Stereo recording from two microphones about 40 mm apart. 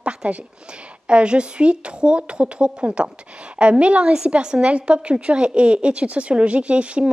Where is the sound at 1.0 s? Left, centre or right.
Right.